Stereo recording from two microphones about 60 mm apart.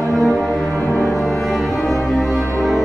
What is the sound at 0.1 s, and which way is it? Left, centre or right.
Music, centre.